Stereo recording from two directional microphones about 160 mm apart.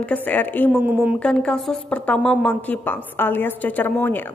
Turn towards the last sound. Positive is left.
turn(degrees=10)  # may be behind; listen again after turning